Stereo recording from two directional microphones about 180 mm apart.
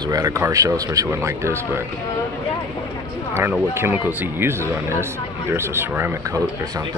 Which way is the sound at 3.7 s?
15° right (ahead or behind).